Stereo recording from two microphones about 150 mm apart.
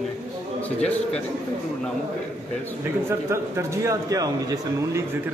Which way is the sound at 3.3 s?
20° right (ahead or behind).